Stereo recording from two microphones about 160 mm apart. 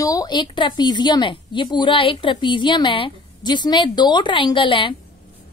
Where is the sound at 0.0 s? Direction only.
20° left (ahead or behind).